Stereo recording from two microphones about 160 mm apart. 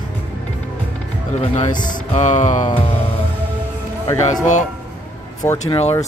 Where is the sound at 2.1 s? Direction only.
50° left (ahead or behind).